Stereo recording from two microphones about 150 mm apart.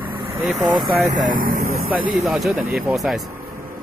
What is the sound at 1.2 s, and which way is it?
Speech, 65° right (ahead or behind).